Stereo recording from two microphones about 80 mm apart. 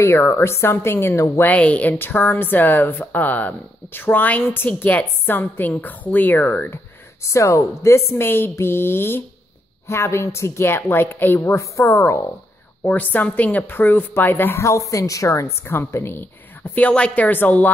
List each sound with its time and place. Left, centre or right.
0.0 s a woman's voice: left
1.4 s speech: centre
7.2 s a woman's voice: left
12.8 s speech: left
16.7 s speech: centre